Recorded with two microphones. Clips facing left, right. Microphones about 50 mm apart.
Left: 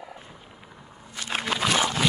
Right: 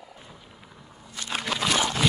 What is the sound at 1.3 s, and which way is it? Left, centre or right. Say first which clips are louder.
Wild animals: left 1 dB; centre.